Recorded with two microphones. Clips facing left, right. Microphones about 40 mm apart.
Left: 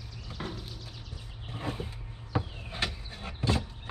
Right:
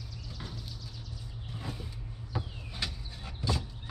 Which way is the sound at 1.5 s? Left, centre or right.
Left.